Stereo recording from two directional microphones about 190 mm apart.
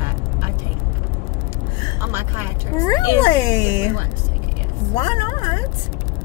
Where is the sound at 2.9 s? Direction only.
25° left (ahead or behind).